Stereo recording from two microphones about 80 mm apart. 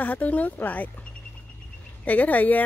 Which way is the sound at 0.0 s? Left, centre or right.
Centre.